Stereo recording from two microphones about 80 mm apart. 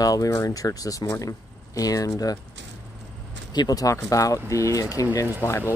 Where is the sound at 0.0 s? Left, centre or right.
Left.